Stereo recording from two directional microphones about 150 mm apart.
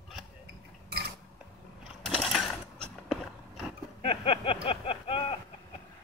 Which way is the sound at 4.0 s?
35° left (ahead or behind).